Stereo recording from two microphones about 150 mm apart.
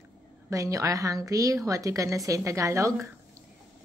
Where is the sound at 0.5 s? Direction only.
20° right (ahead or behind).